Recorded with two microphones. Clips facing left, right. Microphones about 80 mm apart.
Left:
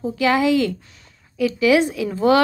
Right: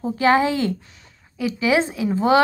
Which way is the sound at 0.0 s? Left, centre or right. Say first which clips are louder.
Right 1 dB; right.